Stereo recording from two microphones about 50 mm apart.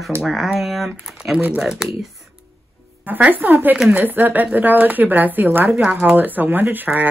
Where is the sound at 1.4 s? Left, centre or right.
Right.